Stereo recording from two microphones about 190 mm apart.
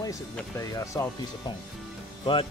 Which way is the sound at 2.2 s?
25° left (ahead or behind).